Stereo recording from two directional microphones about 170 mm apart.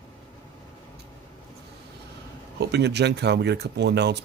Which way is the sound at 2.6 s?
80° right.